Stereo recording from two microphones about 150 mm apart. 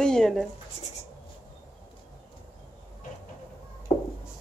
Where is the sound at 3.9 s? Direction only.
40° left (ahead or behind).